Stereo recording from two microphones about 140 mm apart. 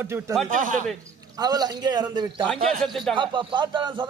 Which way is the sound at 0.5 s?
70° right (ahead or behind).